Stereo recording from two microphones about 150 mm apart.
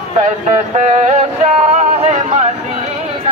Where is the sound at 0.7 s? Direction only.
55° right (ahead or behind).